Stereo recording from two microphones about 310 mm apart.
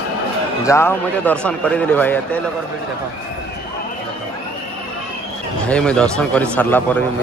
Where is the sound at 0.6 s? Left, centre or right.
Centre.